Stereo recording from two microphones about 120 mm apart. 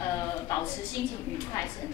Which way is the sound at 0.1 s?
30° left (ahead or behind).